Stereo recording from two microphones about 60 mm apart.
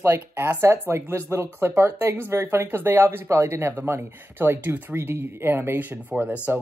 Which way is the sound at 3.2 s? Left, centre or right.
Right.